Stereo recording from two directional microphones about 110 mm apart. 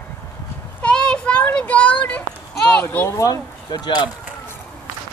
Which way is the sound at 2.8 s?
20° left (ahead or behind).